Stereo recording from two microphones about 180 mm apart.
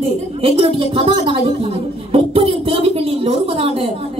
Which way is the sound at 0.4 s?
30° right (ahead or behind).